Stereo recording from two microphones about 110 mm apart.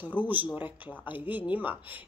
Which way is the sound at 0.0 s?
15° right (ahead or behind).